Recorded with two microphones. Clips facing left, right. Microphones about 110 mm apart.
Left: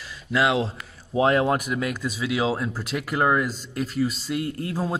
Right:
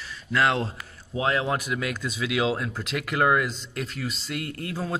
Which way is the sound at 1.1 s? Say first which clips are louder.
Left 5 dB; 35° left (ahead or behind).